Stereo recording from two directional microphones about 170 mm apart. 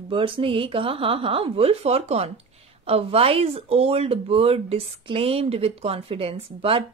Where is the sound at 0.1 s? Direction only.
30° right (ahead or behind).